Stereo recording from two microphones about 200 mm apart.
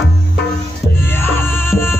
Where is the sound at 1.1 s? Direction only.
10° left (ahead or behind).